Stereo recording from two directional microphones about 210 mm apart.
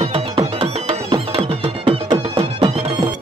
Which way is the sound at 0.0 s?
25° right (ahead or behind).